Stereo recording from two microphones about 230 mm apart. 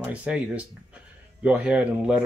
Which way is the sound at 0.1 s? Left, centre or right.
Centre.